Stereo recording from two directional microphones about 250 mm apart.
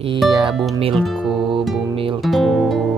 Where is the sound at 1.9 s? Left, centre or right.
Right.